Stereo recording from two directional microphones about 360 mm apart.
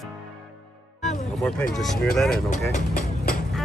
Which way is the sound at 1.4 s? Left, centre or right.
Centre.